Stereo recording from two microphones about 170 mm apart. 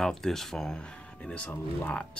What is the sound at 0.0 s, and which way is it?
Speech, 5° left (ahead or behind).